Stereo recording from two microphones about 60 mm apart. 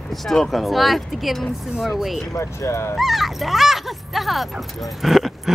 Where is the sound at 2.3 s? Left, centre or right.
Left.